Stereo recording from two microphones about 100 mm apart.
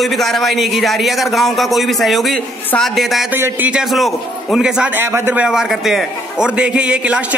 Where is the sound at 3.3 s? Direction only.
20° right (ahead or behind).